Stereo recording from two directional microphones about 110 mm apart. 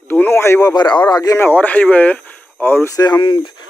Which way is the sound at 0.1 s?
20° left (ahead or behind).